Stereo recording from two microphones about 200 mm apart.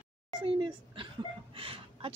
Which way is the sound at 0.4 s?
25° right (ahead or behind).